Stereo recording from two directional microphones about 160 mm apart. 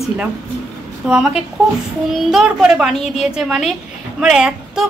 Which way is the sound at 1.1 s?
5° right (ahead or behind).